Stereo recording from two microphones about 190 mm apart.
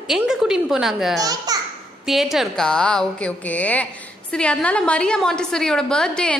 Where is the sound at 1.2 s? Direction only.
20° right (ahead or behind).